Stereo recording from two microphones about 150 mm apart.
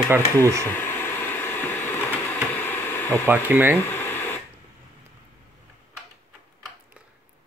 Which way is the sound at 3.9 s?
15° left (ahead or behind).